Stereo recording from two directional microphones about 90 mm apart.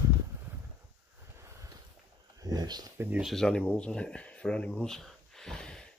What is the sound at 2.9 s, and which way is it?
Speech, 25° right (ahead or behind).